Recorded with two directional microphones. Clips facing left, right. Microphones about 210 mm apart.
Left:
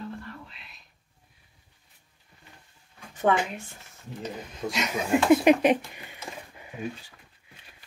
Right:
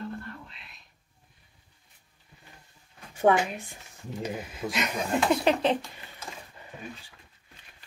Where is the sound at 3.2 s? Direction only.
10° right (ahead or behind); by 6.2 s 10° left (ahead or behind).